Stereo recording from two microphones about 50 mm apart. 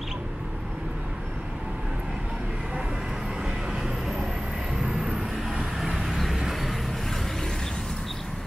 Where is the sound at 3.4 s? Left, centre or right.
Centre.